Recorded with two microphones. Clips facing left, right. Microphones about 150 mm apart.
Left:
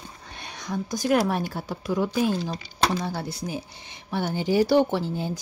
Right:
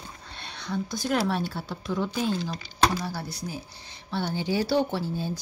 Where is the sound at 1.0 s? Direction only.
15° left (ahead or behind).